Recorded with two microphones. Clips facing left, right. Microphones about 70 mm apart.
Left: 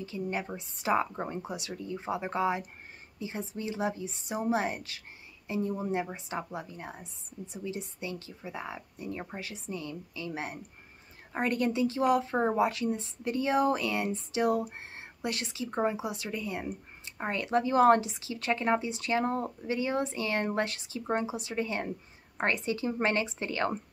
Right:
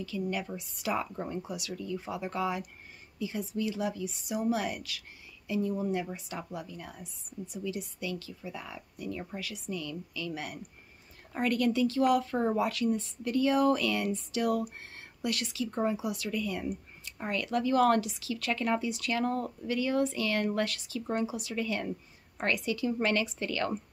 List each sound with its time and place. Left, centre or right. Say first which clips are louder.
0.0 s speech: even; left